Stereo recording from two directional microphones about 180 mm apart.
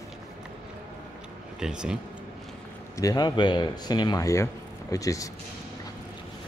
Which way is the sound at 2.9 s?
20° left (ahead or behind).